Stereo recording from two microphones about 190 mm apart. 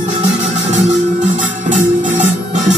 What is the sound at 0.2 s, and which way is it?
Music, 35° right (ahead or behind).